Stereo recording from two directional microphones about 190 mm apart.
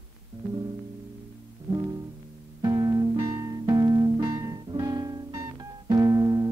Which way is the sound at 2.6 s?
15° right (ahead or behind).